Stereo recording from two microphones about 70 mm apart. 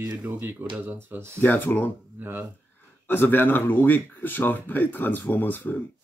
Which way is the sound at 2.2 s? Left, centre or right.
Right.